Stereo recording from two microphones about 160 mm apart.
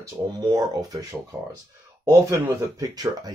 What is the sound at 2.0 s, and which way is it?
Speech, 25° right (ahead or behind).